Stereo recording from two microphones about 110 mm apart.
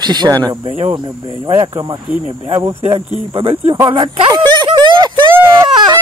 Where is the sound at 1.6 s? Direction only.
45° right (ahead or behind).